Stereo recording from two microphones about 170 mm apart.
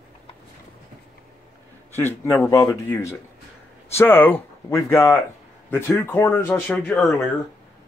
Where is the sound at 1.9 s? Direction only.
15° left (ahead or behind).